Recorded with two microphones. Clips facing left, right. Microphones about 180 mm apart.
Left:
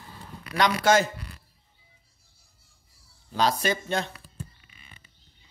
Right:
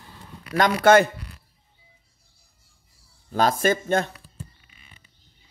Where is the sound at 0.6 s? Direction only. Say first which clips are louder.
Right 5 dB; 55° right (ahead or behind).